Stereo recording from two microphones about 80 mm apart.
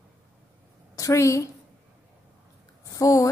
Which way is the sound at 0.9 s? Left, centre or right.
Left.